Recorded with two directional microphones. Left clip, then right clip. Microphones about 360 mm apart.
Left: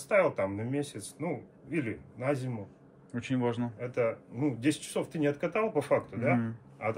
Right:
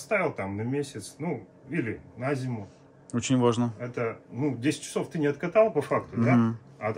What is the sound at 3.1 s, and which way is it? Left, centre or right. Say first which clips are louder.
Speech: right 7 dB; right.